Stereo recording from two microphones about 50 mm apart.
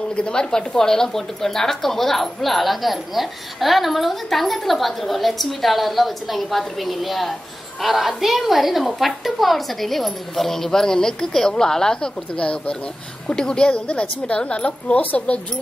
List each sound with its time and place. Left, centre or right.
0.1 s a woman's voice: centre
15.0 s a woman's voice: left